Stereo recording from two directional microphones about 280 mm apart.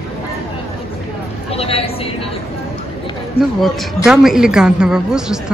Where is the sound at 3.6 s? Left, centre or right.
Centre.